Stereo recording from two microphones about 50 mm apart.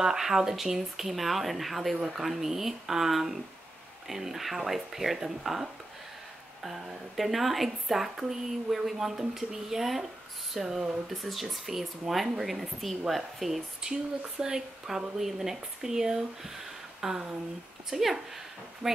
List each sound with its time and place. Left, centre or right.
0.0 s a woman's voice: centre
14.4 s a woman's voice: centre